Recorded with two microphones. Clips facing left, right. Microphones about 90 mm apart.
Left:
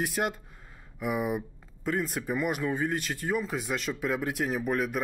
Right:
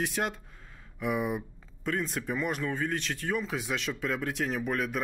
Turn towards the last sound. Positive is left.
turn(degrees=5)  # may be behind; listen again after turning